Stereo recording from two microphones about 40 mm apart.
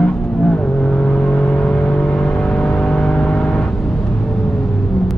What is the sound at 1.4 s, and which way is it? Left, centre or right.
Vehicle, left.